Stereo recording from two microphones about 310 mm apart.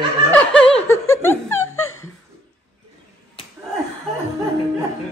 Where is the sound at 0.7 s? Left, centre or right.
Centre.